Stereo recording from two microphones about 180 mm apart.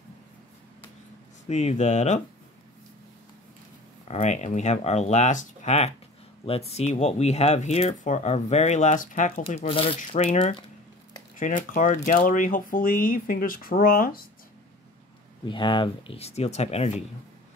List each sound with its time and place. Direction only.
1.5 s speech: 40° left (ahead or behind)
4.1 s speech: 40° left (ahead or behind)
9.5 s speech: 35° left (ahead or behind)
11.3 s speech: 45° left (ahead or behind)
15.4 s speech: 25° left (ahead or behind)